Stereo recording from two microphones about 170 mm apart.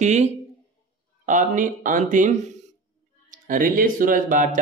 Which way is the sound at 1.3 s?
50° right (ahead or behind).